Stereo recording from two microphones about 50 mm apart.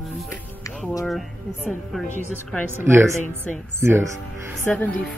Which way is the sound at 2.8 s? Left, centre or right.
Right.